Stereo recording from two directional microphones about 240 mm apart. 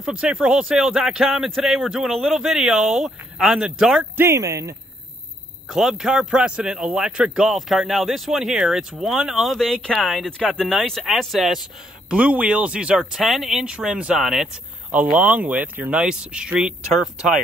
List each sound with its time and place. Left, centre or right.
0.0 s a man's voice: centre
5.7 s a man's voice: centre